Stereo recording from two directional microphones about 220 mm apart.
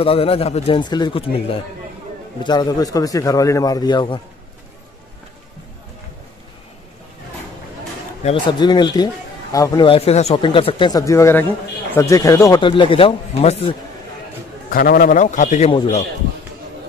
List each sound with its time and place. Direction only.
0.0 s a man's voice: 25° left (ahead or behind)
8.2 s a man's voice: 25° left (ahead or behind)
14.7 s a man's voice: 40° left (ahead or behind)